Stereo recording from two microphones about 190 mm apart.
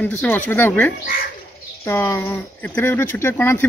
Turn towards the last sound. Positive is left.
turn(degrees=10)  # may be behind; listen again after turning